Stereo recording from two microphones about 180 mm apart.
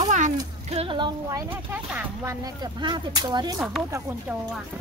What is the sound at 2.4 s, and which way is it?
Speech, 25° right (ahead or behind).